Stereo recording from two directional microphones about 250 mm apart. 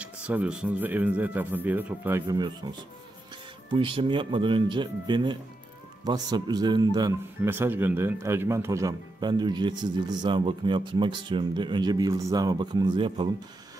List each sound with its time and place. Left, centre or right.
0.0 s speech: centre
3.7 s speech: right